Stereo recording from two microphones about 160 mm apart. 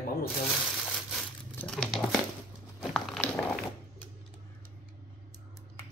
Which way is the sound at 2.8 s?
Centre (ahead or behind).